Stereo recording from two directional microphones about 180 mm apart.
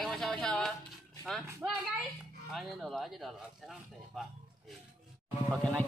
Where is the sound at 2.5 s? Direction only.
Centre (ahead or behind).